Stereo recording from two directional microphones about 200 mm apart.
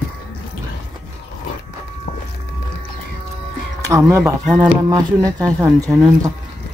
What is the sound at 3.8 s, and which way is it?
Speech, 15° right (ahead or behind).